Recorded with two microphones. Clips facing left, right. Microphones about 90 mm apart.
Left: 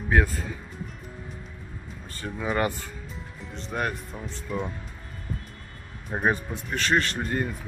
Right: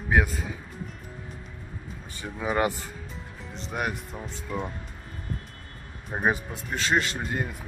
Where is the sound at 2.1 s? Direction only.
10° right (ahead or behind).